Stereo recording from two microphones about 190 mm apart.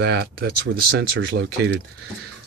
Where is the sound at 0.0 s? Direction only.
60° right (ahead or behind).